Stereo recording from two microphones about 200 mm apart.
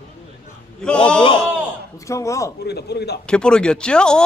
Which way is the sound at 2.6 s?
55° left (ahead or behind).